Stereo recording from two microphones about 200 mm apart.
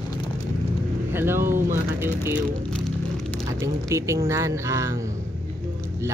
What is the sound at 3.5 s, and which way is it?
Speech, 15° right (ahead or behind).